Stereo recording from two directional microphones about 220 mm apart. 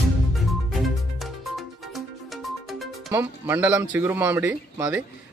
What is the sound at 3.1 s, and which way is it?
Speech, 10° right (ahead or behind).